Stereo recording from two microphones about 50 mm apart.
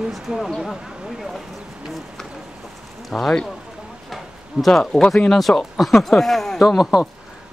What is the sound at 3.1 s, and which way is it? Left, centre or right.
Speech, centre.